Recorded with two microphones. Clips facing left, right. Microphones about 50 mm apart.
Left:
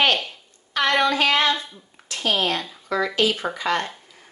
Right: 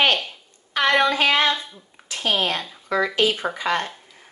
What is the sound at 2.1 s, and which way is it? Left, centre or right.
A woman's voice, centre.